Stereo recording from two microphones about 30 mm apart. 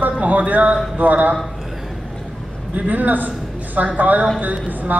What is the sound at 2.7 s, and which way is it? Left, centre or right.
A man's voice, right.